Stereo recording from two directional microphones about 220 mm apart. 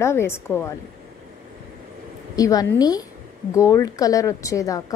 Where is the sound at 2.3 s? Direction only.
15° left (ahead or behind).